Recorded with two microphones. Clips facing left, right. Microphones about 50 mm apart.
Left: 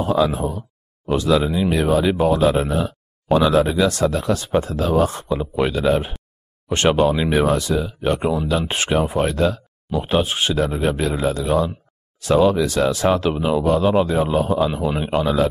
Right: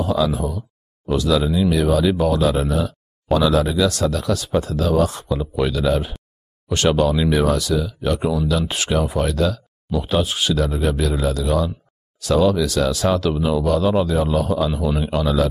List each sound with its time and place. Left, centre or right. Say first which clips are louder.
0.0 s speech: left 1 dB; left